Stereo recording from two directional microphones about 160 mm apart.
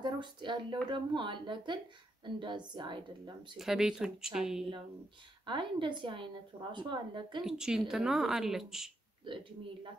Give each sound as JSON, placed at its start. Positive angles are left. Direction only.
{"t": 0.0, "sound": "speech", "side_deg": -30}
{"t": 3.5, "sound": "speech", "side_deg": -5}
{"t": 5.4, "sound": "speech", "side_deg": -30}
{"t": 7.4, "sound": "speech", "side_deg": -5}